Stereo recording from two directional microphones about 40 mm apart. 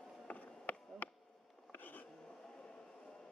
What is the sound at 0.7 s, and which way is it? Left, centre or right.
Insect, left.